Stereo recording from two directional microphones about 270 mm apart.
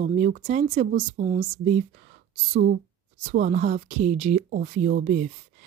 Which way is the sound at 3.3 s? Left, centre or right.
Right.